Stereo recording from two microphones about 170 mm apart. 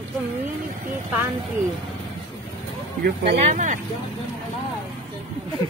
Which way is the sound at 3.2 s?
45° right (ahead or behind).